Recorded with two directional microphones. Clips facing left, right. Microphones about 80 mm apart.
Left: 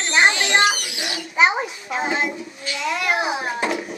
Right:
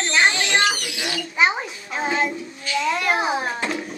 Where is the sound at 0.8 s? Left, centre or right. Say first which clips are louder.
Right 1 dB; right.